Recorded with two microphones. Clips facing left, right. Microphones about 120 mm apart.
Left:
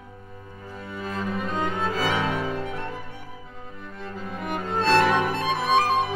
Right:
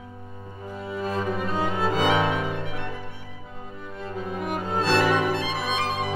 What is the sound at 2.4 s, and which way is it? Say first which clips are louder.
Music: left 1 dB; centre (ahead or behind).